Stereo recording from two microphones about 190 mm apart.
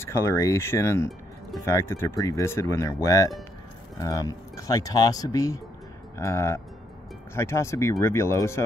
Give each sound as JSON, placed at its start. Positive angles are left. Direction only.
{"t": 0.0, "sound": "speech", "side_deg": 15}